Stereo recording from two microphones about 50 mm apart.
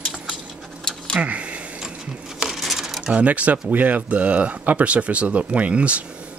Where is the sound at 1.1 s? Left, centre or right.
Right.